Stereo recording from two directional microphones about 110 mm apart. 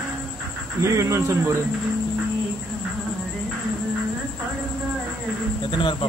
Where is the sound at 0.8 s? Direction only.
25° right (ahead or behind).